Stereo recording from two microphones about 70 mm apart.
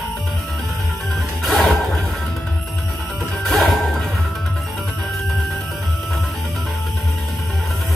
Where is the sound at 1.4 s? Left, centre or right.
Centre.